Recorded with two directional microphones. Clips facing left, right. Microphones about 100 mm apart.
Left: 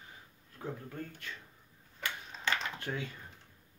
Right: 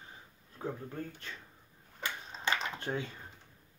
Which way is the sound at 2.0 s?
25° right (ahead or behind).